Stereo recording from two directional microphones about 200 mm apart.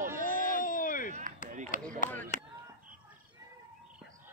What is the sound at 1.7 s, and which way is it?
Chop, 40° left (ahead or behind).